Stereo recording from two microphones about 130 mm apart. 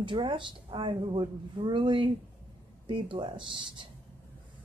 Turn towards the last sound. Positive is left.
turn(degrees=-40)  # may be behind; listen again after turning